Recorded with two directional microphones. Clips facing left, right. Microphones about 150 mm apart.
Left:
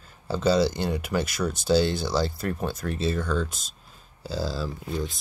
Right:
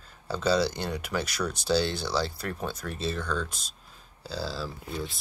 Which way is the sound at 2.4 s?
Centre (ahead or behind).